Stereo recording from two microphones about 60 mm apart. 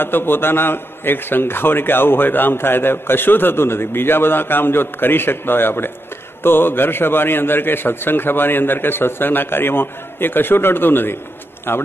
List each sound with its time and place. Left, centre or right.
0.0 s a man's voice: left